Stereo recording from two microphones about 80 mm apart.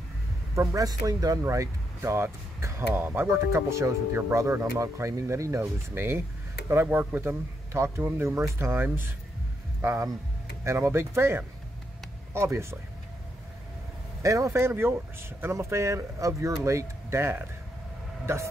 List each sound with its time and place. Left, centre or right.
0.6 s speech: right
7.7 s speech: right
14.2 s speech: right